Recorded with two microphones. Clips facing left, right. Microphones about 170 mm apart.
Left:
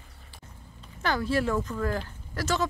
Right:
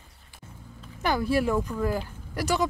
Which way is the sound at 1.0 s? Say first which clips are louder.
Right 2 dB; 10° right (ahead or behind).